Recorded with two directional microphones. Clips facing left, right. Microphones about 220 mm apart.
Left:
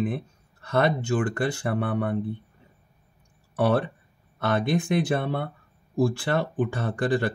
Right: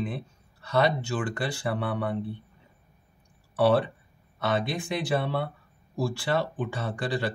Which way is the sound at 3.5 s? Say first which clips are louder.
Right 1 dB; 50° left (ahead or behind).